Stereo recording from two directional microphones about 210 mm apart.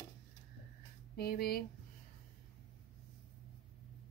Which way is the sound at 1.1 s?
45° left (ahead or behind).